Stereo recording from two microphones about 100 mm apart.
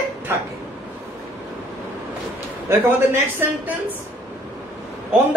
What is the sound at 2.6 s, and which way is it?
Speech, 20° right (ahead or behind).